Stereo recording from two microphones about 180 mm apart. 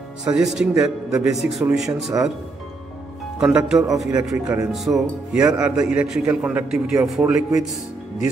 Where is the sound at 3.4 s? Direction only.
5° right (ahead or behind).